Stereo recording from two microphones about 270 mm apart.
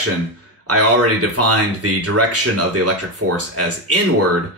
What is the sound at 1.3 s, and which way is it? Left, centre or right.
Speech, right.